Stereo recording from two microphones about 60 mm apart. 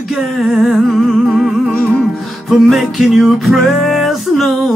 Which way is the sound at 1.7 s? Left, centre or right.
Left.